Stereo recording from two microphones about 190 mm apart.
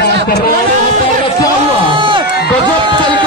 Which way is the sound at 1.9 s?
25° right (ahead or behind).